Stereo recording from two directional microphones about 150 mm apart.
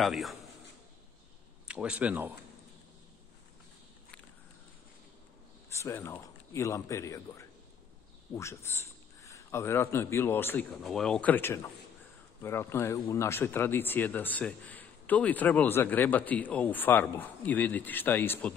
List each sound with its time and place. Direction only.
0.0 s a man's voice: centre (ahead or behind)
1.7 s speech: 5° right (ahead or behind)
5.8 s a man's voice: 15° left (ahead or behind)